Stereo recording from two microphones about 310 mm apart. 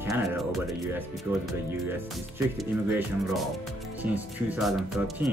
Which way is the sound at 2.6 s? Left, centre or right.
Centre.